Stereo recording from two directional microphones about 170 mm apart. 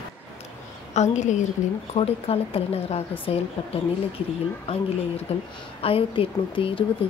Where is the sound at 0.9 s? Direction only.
45° left (ahead or behind).